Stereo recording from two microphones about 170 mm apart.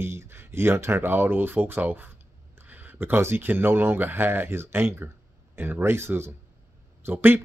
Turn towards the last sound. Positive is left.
turn(degrees=-15)  # may be behind; listen again after turning